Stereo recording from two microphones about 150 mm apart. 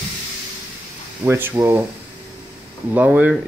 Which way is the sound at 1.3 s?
15° right (ahead or behind).